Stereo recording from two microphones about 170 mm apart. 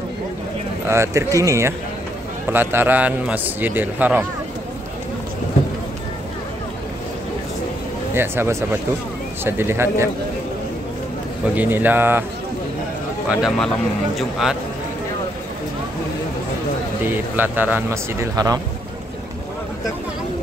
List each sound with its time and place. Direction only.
0.8 s a man's voice: 15° right (ahead or behind)
8.1 s a man's voice: 15° right (ahead or behind)
11.5 s a man's voice: 10° right (ahead or behind)
13.3 s speech: 5° right (ahead or behind)
17.0 s a man's voice: 10° right (ahead or behind)